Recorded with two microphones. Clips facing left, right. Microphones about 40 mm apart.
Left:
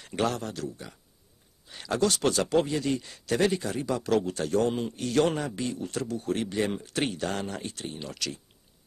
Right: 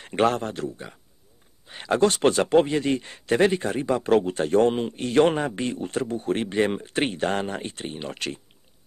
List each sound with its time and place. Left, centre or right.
0.0 s speech: right